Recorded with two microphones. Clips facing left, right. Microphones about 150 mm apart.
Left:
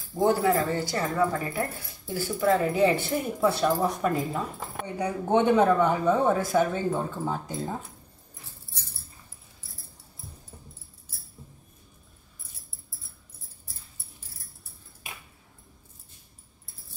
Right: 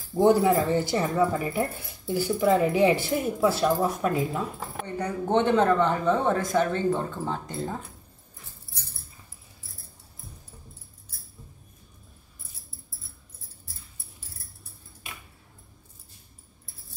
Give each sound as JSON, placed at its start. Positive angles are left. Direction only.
{"t": 0.1, "sound": "speech", "side_deg": -15}
{"t": 4.8, "sound": "speech", "side_deg": 10}